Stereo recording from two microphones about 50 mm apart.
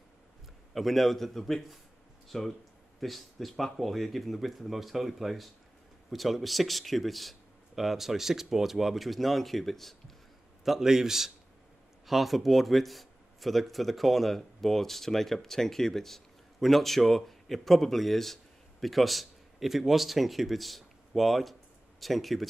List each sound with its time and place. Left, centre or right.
0.7 s speech: centre
10.6 s a man's voice: centre